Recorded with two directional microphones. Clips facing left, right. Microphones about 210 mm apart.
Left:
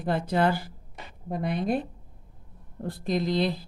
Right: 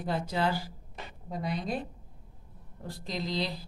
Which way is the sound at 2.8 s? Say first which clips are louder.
Left 9 dB; 55° left (ahead or behind).